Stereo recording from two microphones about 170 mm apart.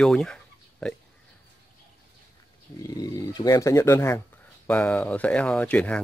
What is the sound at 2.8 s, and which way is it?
Speech, 20° left (ahead or behind).